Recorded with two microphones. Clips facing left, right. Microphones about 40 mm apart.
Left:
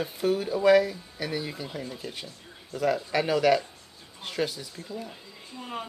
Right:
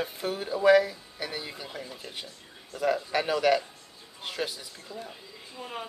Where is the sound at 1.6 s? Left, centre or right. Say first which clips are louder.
Left 4 dB; centre.